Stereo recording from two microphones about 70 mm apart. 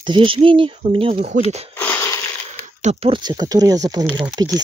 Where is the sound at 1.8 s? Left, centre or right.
Left.